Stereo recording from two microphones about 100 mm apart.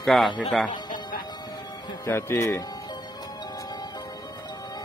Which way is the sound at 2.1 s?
25° left (ahead or behind).